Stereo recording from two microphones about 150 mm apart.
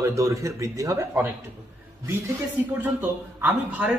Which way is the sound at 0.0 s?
20° right (ahead or behind).